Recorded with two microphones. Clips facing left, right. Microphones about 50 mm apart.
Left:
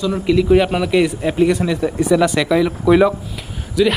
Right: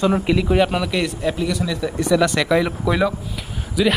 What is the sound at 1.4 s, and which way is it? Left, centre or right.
Speech, left.